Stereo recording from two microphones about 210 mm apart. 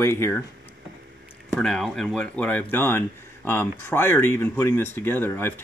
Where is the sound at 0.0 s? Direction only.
10° left (ahead or behind).